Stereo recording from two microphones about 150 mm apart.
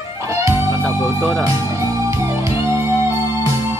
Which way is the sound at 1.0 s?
Centre (ahead or behind).